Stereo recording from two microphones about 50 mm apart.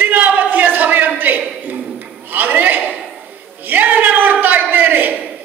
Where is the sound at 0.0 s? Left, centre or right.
Right.